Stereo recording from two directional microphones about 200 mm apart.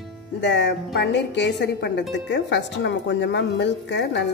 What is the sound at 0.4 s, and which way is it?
Speech, 60° left (ahead or behind).